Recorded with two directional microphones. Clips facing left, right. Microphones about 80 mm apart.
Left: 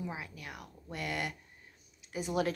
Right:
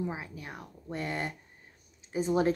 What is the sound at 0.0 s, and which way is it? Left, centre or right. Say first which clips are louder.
A woman's voice: right 5 dB; right.